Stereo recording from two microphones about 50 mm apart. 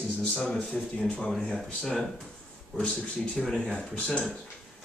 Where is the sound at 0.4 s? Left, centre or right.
Centre.